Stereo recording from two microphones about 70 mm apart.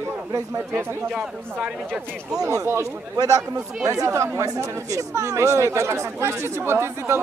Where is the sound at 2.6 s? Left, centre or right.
Right.